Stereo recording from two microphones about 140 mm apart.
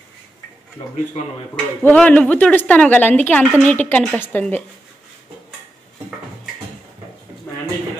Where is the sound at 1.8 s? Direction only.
10° left (ahead or behind).